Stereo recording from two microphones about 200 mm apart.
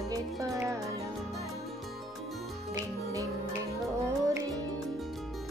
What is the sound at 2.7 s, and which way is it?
Music, 15° right (ahead or behind).